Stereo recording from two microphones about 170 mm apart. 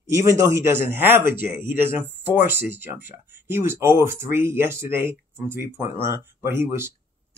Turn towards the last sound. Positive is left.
turn(degrees=-15)  # may be behind; listen again after turning